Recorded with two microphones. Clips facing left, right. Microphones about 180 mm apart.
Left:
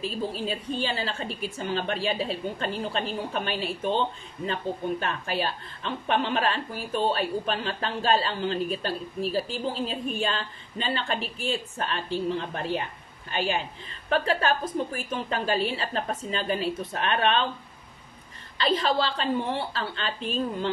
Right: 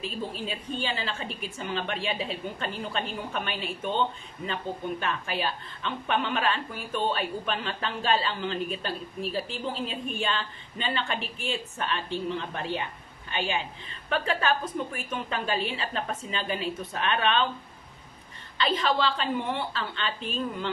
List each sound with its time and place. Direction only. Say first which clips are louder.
0.0 s a woman's voice: left 4 dB; 40° left (ahead or behind)
5.0 s a woman's voice: left 1 dB; 40° left (ahead or behind)
18.6 s a woman's voice: left 1 dB; 35° left (ahead or behind)